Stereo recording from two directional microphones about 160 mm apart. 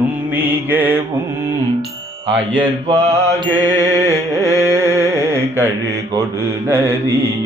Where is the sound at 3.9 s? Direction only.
15° right (ahead or behind).